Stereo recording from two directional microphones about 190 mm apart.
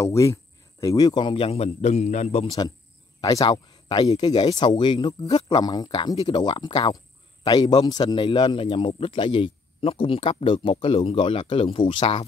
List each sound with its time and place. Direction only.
0.0 s a man's voice: 15° left (ahead or behind)